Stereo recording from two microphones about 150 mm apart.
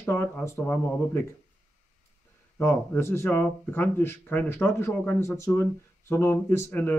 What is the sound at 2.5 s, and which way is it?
Speech, 15° left (ahead or behind).